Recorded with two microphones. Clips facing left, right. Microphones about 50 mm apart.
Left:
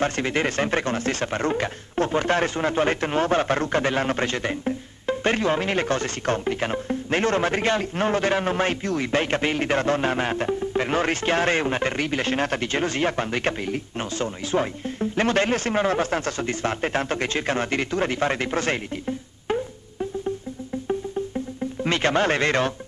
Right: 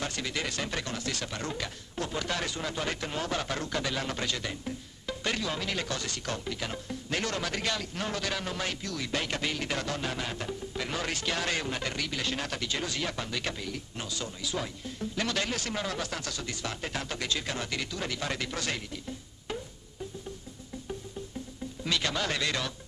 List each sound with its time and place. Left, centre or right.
0.0 s speech: left
21.8 s speech: left